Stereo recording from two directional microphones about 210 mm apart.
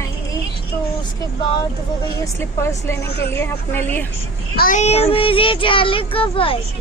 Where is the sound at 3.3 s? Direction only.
10° left (ahead or behind).